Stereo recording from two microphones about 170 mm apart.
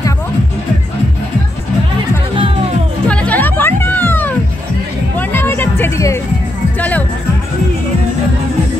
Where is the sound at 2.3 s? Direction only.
30° right (ahead or behind).